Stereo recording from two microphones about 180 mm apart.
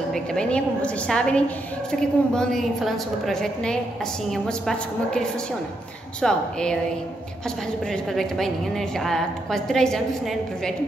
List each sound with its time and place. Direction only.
0.1 s a woman's voice: 5° left (ahead or behind)
6.2 s a woman's voice: 5° left (ahead or behind)
7.9 s a woman's voice: centre (ahead or behind)